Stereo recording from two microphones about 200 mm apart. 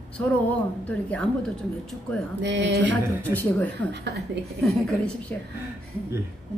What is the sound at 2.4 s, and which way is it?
Speech, 60° right (ahead or behind).